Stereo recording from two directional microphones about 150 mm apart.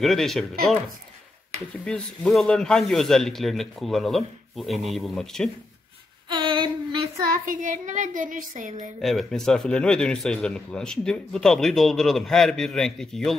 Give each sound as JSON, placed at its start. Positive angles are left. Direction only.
{"t": 0.0, "sound": "a man's voice", "side_deg": 0}
{"t": 1.9, "sound": "a man's voice", "side_deg": 5}
{"t": 6.2, "sound": "child singing", "side_deg": -30}
{"t": 7.4, "sound": "speech", "side_deg": -60}
{"t": 9.0, "sound": "a man's voice", "side_deg": 0}